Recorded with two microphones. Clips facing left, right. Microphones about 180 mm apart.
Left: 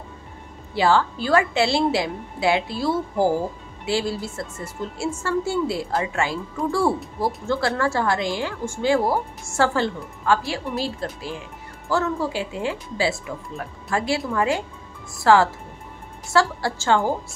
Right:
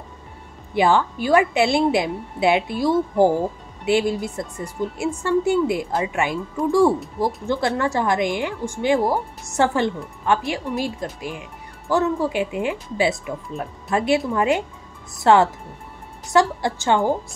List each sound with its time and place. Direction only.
0.7 s a woman's voice: 15° right (ahead or behind)